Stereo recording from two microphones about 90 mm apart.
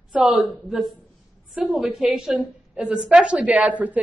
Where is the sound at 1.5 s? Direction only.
5° right (ahead or behind).